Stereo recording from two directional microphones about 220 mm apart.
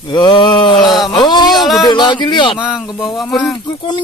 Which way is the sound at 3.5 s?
20° left (ahead or behind).